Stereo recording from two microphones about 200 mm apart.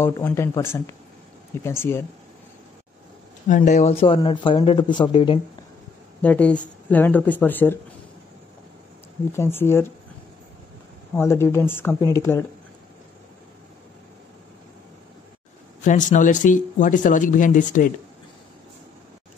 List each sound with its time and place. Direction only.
0.0 s speech: 10° left (ahead or behind)
3.4 s speech: 40° left (ahead or behind)
6.2 s speech: 5° left (ahead or behind)
9.3 s speech: 10° left (ahead or behind)
11.1 s speech: 10° left (ahead or behind)
15.8 s speech: 40° left (ahead or behind)